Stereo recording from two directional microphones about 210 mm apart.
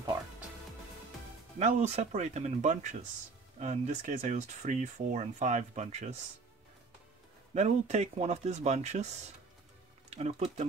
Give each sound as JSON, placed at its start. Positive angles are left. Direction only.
{"t": 1.6, "sound": "speech", "side_deg": -30}
{"t": 7.5, "sound": "speech", "side_deg": -30}